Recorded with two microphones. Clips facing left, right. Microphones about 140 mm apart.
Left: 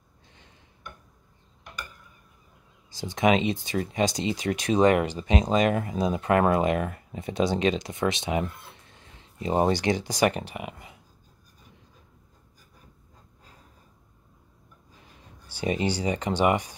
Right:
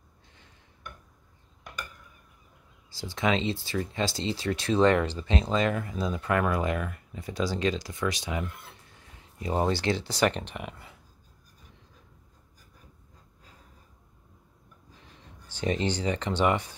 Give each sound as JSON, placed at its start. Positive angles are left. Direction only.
{"t": 2.9, "sound": "speech", "side_deg": 20}
{"t": 15.4, "sound": "speech", "side_deg": 10}